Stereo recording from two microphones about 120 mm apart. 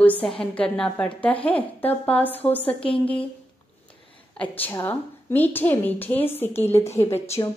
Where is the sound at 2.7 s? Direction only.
50° left (ahead or behind).